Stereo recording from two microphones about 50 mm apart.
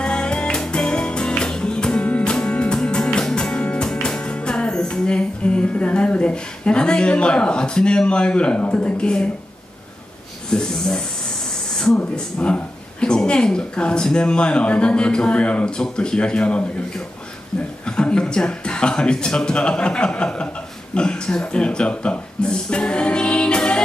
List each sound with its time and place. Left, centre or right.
0.0 s music: centre
10.5 s speech: centre
11.7 s a sound: centre
12.4 s a man's voice: centre